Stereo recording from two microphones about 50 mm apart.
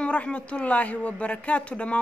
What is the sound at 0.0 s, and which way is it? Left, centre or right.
Speech, left.